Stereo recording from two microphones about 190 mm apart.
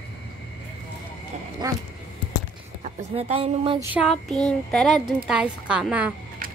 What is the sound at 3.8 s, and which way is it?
A woman's voice, 5° right (ahead or behind).